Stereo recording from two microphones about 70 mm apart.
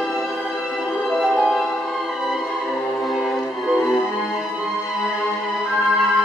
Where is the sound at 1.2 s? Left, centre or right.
Centre.